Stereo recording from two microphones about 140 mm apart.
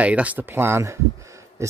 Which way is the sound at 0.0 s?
10° right (ahead or behind).